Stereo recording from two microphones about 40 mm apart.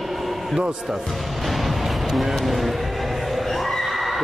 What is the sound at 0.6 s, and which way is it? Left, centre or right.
Speech, centre.